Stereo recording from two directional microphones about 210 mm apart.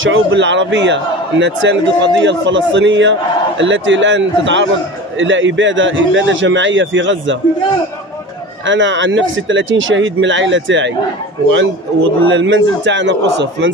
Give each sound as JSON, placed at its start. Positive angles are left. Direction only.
{"t": 0.0, "sound": "a man's voice", "side_deg": -60}
{"t": 8.6, "sound": "a man's voice", "side_deg": -60}
{"t": 12.3, "sound": "a man's voice", "side_deg": -60}